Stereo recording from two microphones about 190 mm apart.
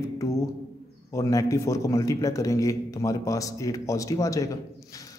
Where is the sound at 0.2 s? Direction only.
15° left (ahead or behind).